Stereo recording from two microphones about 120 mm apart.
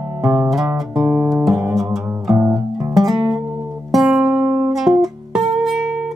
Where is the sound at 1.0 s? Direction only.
15° right (ahead or behind).